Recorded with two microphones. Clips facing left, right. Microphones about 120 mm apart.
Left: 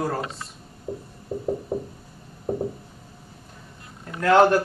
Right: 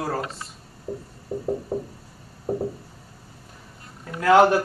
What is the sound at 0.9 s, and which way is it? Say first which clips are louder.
Music: even; 15° left (ahead or behind).